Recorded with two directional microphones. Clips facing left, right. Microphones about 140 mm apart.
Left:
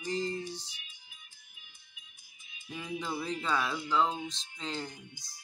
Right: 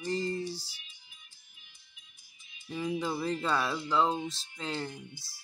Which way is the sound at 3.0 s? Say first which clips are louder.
Right 3 dB; centre (ahead or behind).